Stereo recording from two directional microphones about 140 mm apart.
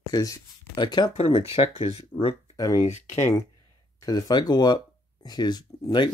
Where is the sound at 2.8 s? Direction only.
55° left (ahead or behind).